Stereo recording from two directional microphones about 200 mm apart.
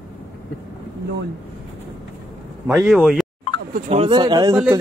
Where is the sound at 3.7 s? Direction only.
30° right (ahead or behind).